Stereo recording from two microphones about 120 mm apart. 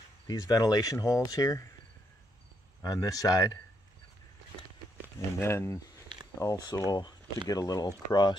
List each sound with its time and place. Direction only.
0.3 s speech: 30° left (ahead or behind)
2.8 s speech: 30° left (ahead or behind)
5.4 s speech: 20° left (ahead or behind)
6.4 s speech: 30° left (ahead or behind)